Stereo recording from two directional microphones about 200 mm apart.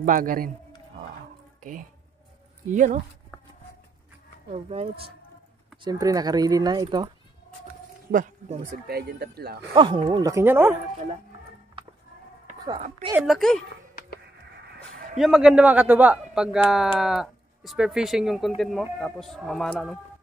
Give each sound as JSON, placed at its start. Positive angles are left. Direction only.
{"t": 0.0, "sound": "speech", "side_deg": -45}
{"t": 1.6, "sound": "speech", "side_deg": -40}
{"t": 4.5, "sound": "speech", "side_deg": -30}
{"t": 5.9, "sound": "speech", "side_deg": -15}
{"t": 8.1, "sound": "speech", "side_deg": -40}
{"t": 9.8, "sound": "speech", "side_deg": -25}
{"t": 10.3, "sound": "speech", "side_deg": -10}
{"t": 13.2, "sound": "speech", "side_deg": 0}
{"t": 15.1, "sound": "speech", "side_deg": 0}